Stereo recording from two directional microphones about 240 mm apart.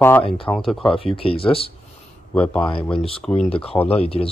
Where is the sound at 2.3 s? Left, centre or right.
Centre.